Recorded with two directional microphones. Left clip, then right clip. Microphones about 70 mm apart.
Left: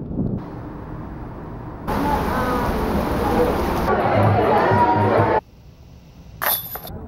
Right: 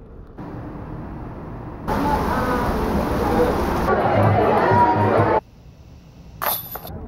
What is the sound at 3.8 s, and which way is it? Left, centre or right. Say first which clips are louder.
Music: even; left.